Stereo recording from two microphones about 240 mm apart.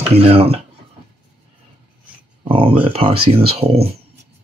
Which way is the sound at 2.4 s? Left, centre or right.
Right.